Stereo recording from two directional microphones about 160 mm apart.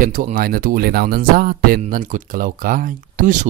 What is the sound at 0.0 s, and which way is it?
Speech, 60° right (ahead or behind).